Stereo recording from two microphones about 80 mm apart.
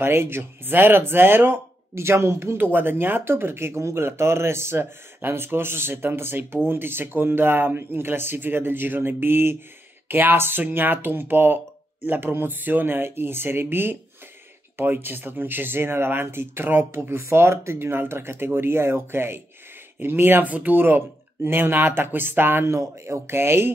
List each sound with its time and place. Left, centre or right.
0.0 s speech: right
22.7 s speech: right